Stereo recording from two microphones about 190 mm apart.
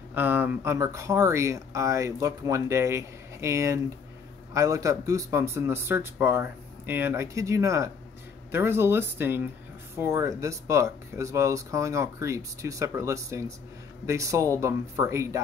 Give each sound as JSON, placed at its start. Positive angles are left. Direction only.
{"t": 0.1, "sound": "speech", "side_deg": -10}